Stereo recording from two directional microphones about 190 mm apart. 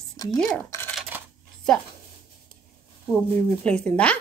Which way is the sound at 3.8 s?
5° left (ahead or behind).